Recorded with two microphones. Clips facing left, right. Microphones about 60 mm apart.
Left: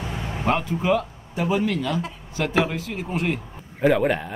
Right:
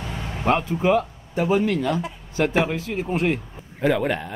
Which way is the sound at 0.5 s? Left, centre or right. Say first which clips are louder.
Right 2 dB; right.